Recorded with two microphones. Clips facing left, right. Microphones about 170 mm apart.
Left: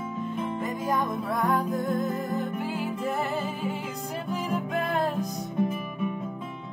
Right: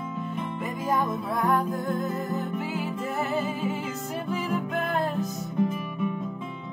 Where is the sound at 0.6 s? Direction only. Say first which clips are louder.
Right 2 dB; 10° right (ahead or behind).